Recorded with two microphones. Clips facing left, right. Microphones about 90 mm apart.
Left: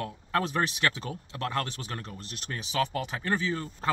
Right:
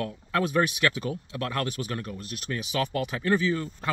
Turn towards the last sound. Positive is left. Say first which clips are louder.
# right 4 dB
turn(degrees=30)  # may be behind; listen again after turning